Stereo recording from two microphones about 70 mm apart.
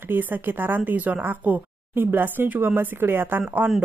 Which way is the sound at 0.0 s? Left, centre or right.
Right.